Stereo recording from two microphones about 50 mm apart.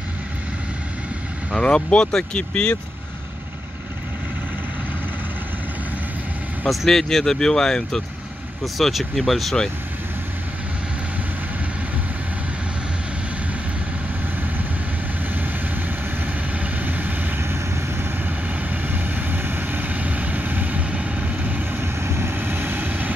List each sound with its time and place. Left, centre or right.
1.5 s speech: left
6.7 s speech: centre
8.7 s speech: centre
16.5 s vehicle: right
17.4 s vehicle: right
18.9 s vehicle: right
21.7 s vehicle: right
22.4 s vehicle: right